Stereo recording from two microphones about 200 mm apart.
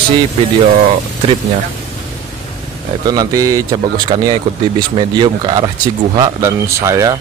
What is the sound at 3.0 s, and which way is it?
Speech, 20° right (ahead or behind).